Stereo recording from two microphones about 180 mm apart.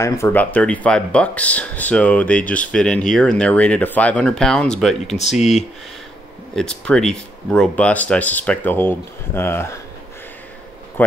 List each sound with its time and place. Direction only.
0.0 s speech: 10° left (ahead or behind)
5.0 s speech: 40° left (ahead or behind)
6.5 s speech: 5° left (ahead or behind)
11.0 s speech: 10° left (ahead or behind)